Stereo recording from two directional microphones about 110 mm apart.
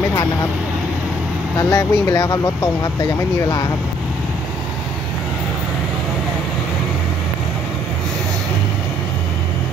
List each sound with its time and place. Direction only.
1.6 s speech: 30° left (ahead or behind)